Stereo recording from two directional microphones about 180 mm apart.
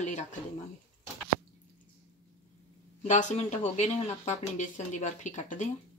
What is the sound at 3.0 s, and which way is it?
Speech, 40° left (ahead or behind).